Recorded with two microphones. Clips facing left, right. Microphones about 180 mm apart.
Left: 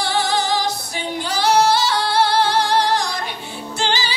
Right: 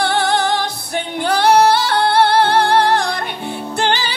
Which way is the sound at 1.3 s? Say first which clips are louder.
Right 4 dB; 60° right (ahead or behind).